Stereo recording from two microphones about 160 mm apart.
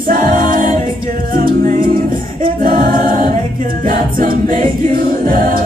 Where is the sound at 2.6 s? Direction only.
60° right (ahead or behind).